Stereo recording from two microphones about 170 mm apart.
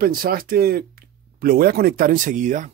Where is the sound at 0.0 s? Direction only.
60° right (ahead or behind).